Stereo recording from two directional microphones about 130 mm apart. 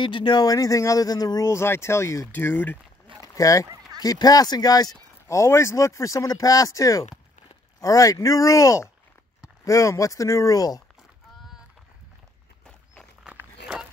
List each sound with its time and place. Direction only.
0.0 s speech: 35° left (ahead or behind); by 2.8 s 15° left (ahead or behind)
3.3 s speech: 25° left (ahead or behind)
3.6 s a sound: 25° right (ahead or behind)
4.0 s speech: 30° left (ahead or behind)
13.2 s walk: 10° right (ahead or behind)